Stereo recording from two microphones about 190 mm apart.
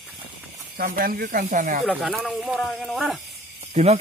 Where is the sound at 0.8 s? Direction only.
50° right (ahead or behind).